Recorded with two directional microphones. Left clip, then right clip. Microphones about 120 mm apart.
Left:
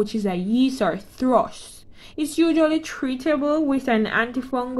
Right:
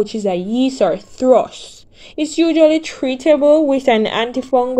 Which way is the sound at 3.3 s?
20° left (ahead or behind).